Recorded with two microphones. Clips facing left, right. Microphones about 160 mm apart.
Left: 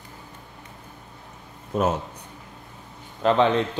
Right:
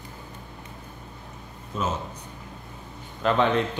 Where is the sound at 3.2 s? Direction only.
25° left (ahead or behind).